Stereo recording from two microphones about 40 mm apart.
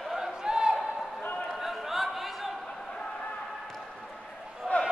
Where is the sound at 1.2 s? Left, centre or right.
Left.